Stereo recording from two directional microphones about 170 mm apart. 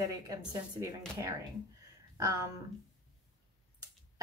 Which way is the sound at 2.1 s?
20° right (ahead or behind).